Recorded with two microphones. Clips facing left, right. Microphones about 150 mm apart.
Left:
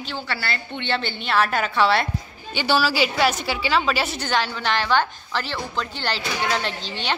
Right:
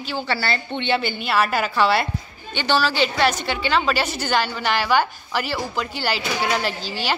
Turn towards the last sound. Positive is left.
turn(degrees=-5)  # may be behind; listen again after turning